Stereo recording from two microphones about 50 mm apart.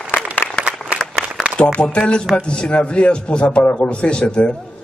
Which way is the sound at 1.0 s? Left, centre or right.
Left.